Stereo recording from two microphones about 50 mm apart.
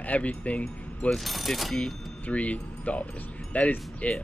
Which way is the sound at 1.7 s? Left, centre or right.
Left.